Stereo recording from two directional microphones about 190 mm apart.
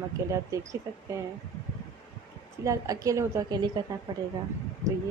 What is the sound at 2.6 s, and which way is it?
Speech, 15° right (ahead or behind).